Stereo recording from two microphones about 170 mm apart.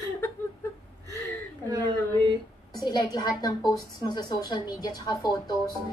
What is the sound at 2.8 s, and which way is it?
A woman's voice, 25° left (ahead or behind).